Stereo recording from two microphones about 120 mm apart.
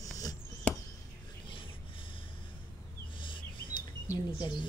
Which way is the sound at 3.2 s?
45° left (ahead or behind).